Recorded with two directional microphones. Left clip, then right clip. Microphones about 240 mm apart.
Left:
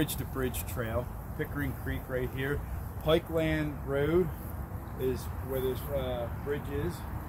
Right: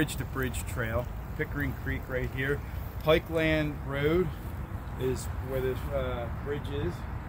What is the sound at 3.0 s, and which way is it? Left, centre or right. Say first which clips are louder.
Speech: right 2 dB; right.